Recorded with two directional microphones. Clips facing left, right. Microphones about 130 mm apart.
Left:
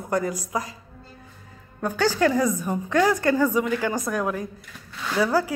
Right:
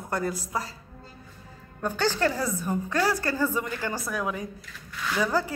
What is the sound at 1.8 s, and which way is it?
A woman's voice, 10° left (ahead or behind).